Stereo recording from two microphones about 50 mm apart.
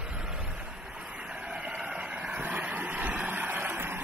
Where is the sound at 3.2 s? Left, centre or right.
Right.